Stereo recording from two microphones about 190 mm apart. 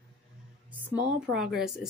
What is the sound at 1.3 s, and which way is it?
Speech, centre (ahead or behind).